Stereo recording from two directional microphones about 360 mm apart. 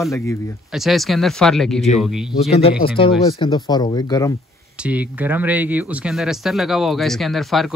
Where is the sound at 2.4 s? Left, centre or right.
Centre.